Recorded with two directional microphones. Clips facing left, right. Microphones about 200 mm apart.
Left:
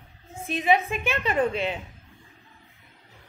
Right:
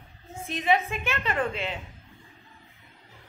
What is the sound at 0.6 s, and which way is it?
A woman's voice, 15° left (ahead or behind).